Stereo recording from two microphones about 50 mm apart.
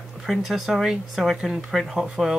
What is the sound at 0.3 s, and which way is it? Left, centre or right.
Speech, centre.